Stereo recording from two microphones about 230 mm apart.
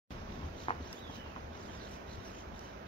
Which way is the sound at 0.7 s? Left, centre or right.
Left.